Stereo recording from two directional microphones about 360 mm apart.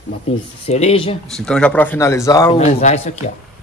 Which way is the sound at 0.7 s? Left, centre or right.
Centre.